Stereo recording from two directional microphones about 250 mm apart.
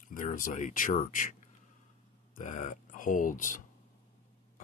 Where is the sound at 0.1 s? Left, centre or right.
Left.